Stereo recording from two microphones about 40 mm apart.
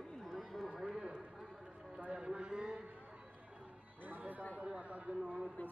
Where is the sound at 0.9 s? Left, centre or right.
Right.